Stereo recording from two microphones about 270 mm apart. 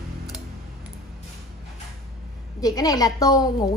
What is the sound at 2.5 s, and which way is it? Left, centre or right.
Speech, centre.